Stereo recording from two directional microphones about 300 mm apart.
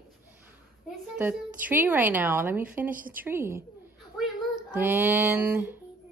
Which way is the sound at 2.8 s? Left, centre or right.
Right.